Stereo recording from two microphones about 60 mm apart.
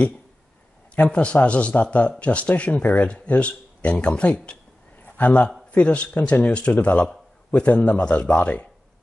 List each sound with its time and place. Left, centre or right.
0.9 s a man's voice: left